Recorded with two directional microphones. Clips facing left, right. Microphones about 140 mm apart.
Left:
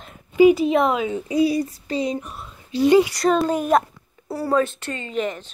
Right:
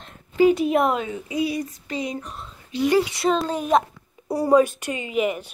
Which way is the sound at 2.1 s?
10° left (ahead or behind).